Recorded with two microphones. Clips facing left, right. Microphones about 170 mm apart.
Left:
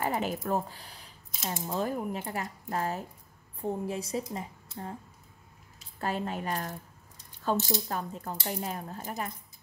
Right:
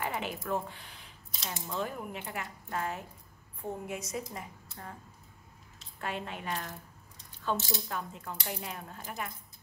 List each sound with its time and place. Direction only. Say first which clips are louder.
0.0 s speech: left 5 dB; 40° left (ahead or behind)
5.9 s speech: left 5 dB; 40° left (ahead or behind)